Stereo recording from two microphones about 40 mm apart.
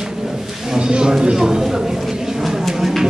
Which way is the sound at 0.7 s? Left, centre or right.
Right.